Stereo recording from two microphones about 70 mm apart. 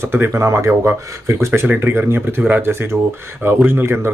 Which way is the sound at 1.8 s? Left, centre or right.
Right.